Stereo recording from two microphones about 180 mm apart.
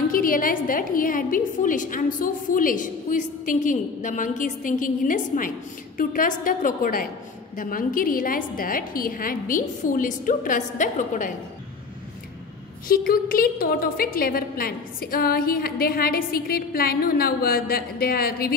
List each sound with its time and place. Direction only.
0.1 s a sound: 50° left (ahead or behind)
0.7 s a woman's voice: 50° left (ahead or behind)
12.8 s a woman's voice: 55° left (ahead or behind)